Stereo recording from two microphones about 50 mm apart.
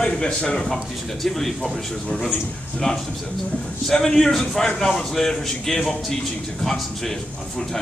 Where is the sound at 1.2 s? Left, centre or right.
Centre.